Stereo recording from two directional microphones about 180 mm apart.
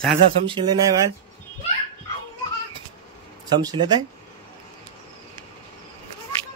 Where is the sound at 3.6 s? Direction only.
20° right (ahead or behind).